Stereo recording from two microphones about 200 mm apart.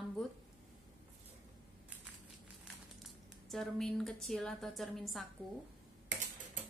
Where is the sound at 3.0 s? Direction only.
Centre (ahead or behind).